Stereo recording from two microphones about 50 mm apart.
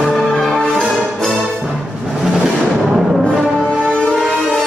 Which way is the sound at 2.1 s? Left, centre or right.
Centre.